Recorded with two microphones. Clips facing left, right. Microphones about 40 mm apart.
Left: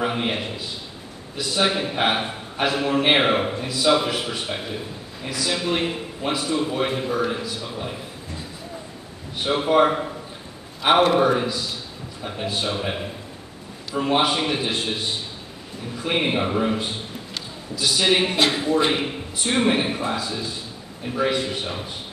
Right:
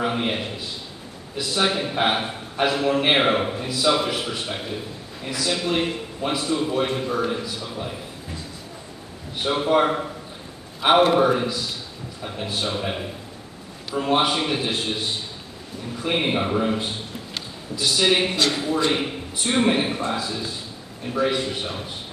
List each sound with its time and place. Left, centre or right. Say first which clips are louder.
0.0 s a man's voice: even; centre
9.4 s a man's voice: left 1 dB; centre
12.5 s a man's voice: right 1 dB; centre
16.0 s a man's voice: even; centre
17.3 s a sound: even; centre
18.3 s speech: left 2 dB; left
18.9 s a man's voice: even; centre